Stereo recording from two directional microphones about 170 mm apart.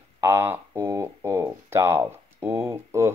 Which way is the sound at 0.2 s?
15° right (ahead or behind).